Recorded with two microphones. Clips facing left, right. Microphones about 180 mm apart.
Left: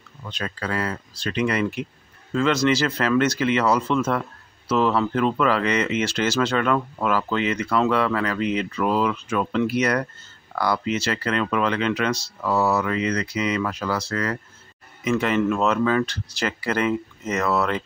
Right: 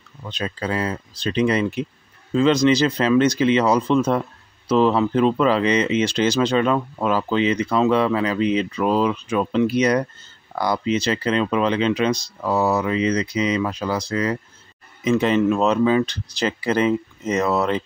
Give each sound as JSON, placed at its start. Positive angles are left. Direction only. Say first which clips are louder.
{"t": 0.2, "sound": "speech", "louder": "right 3 dB", "side_deg": -20}